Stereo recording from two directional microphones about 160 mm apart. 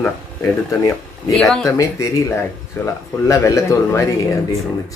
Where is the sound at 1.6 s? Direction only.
20° left (ahead or behind).